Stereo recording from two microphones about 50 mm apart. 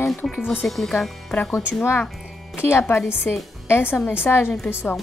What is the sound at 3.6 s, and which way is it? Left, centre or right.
Speech, left.